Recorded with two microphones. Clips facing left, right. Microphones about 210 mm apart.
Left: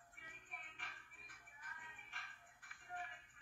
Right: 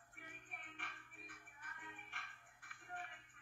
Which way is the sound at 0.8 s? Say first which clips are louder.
Right 4 dB; 60° right (ahead or behind).